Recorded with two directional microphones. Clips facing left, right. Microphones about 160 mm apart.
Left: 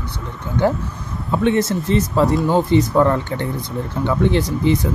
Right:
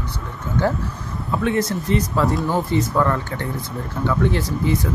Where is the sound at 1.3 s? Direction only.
25° left (ahead or behind).